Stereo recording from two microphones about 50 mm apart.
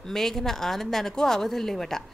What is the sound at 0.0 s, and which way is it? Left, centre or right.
Speech, centre.